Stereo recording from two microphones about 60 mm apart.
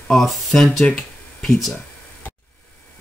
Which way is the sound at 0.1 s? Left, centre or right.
Centre.